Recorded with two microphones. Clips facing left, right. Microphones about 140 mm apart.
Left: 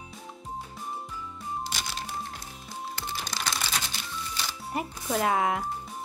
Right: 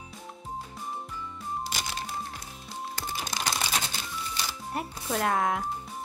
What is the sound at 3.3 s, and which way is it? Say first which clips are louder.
Typing: right 2 dB; 20° right (ahead or behind).